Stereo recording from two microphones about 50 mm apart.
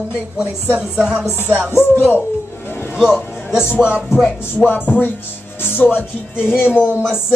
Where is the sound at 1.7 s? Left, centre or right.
Left.